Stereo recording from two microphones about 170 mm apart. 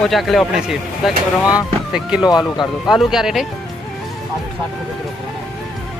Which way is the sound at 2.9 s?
5° right (ahead or behind).